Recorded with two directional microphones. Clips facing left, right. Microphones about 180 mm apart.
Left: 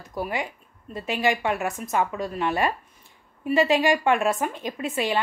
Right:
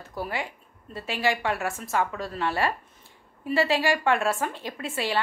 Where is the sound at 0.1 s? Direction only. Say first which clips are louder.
Left 3 dB; 15° left (ahead or behind).